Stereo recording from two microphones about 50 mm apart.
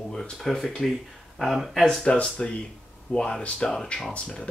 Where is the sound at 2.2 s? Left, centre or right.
Centre.